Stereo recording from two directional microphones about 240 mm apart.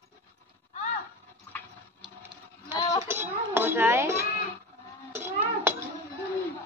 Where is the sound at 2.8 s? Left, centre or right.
Centre.